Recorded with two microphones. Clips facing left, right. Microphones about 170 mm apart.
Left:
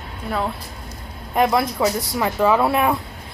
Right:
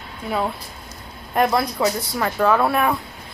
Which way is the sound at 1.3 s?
10° left (ahead or behind).